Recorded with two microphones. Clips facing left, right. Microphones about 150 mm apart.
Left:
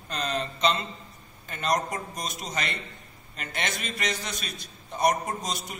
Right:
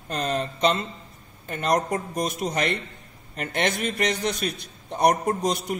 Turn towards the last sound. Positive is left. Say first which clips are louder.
# right 9 dB
turn(degrees=-60)  # may be behind; listen again after turning